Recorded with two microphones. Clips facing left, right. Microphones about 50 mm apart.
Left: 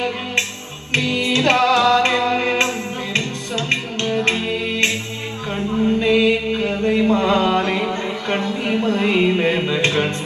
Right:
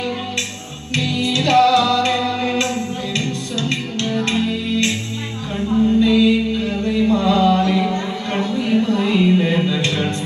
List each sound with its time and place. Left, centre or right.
0.9 s music: left
5.5 s a sound: left
9.7 s music: left